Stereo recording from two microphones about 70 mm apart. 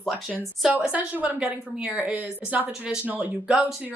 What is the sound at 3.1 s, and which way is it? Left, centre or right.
Speech, right.